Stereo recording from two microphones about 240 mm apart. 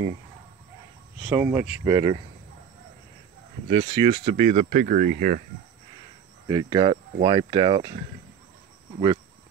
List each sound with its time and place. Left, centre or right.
1.2 s speech: centre
3.6 s speech: right
6.4 s speech: centre